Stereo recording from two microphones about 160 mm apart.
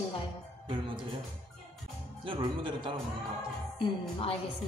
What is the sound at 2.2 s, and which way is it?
Speech, 30° right (ahead or behind).